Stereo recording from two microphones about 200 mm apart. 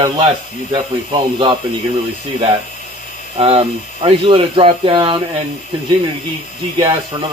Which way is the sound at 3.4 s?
30° right (ahead or behind).